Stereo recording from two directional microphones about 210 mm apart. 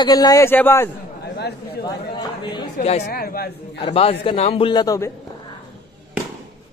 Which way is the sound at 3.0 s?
45° left (ahead or behind).